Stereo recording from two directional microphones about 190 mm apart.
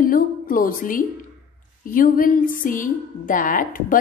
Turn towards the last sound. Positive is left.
turn(degrees=45)  # may be behind; listen again after turning